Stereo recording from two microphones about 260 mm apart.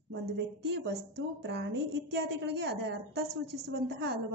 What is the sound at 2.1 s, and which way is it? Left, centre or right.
A woman's voice, right.